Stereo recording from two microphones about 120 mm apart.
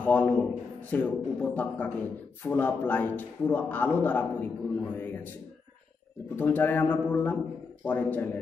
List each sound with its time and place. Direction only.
0.0 s a man's voice: 10° left (ahead or behind)
6.3 s a man's voice: 15° left (ahead or behind)